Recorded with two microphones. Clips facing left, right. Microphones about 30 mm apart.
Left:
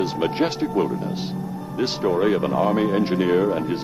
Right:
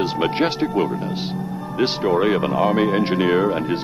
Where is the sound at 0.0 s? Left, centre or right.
Right.